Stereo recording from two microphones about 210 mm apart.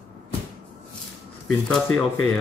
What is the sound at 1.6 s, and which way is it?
Speech, 5° left (ahead or behind).